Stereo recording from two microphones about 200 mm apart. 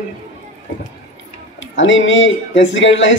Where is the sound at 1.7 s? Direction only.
70° left (ahead or behind).